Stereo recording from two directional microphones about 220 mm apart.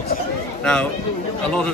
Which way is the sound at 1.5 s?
5° left (ahead or behind).